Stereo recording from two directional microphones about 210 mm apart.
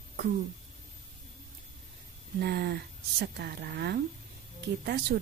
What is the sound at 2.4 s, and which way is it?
Speech, 50° right (ahead or behind).